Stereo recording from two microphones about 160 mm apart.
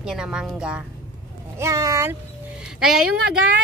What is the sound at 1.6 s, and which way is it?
Speech, 20° right (ahead or behind).